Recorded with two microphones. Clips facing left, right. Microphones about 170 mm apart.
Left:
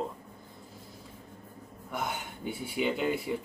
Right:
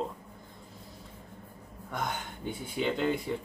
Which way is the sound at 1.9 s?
10° left (ahead or behind).